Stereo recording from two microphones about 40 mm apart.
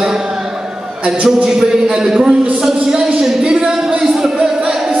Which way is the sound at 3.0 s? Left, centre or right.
Right.